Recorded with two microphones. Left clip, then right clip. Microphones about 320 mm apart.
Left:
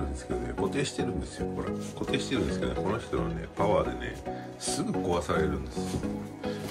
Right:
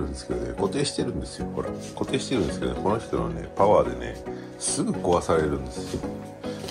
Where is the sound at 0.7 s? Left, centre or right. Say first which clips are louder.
Right 4 dB; centre.